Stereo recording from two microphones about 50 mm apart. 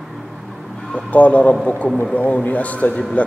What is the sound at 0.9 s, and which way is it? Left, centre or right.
A man's voice, left.